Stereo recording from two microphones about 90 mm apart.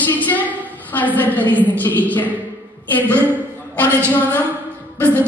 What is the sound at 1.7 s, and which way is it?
Speech, 20° left (ahead or behind).